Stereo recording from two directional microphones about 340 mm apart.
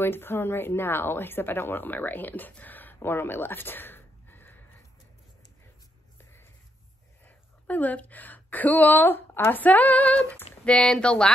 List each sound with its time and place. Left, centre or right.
0.0 s speech: centre
7.2 s a woman's voice: centre